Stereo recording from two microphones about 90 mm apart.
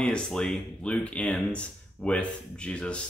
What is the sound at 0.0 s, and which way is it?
Speech, 5° left (ahead or behind).